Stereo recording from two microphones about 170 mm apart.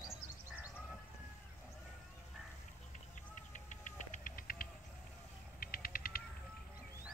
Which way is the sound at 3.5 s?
45° left (ahead or behind).